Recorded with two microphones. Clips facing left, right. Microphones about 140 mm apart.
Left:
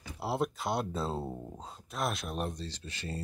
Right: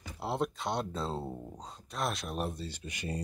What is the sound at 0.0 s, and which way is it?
Speech, 5° left (ahead or behind).